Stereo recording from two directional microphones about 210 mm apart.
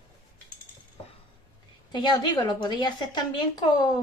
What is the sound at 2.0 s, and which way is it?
Speech, 20° left (ahead or behind).